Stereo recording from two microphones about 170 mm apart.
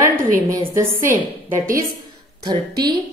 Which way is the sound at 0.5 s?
15° right (ahead or behind).